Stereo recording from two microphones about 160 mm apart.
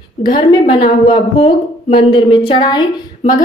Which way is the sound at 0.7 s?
35° left (ahead or behind).